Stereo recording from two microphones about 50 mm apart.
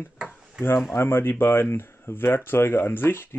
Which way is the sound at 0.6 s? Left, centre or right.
Left.